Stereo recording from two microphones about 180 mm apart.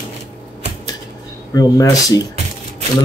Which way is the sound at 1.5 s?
20° left (ahead or behind).